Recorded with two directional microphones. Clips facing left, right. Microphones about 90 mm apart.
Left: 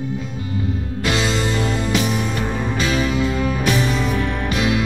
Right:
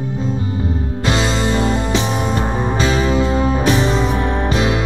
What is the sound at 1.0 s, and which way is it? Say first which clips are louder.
Music: right 3 dB; 30° right (ahead or behind).